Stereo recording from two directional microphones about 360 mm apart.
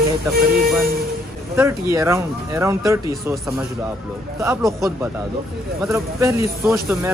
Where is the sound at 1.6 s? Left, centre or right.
Centre.